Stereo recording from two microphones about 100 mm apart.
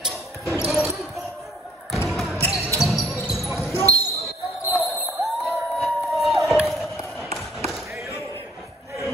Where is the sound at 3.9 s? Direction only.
35° right (ahead or behind).